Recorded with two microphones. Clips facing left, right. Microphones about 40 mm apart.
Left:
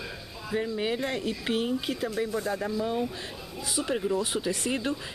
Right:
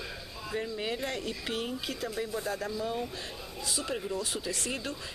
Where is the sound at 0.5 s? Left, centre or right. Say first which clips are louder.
Left 5 dB; centre.